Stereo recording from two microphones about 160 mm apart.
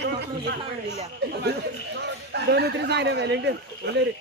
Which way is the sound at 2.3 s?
90° right.